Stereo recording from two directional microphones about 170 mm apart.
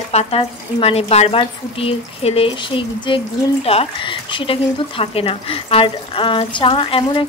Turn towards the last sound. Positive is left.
turn(degrees=30)  # may be behind; listen again after turning